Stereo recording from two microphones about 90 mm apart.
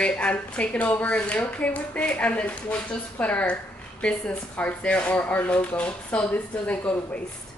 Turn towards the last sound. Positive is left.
turn(degrees=15)  # may be behind; listen again after turning